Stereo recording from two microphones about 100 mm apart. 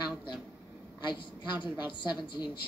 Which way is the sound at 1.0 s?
50° left (ahead or behind).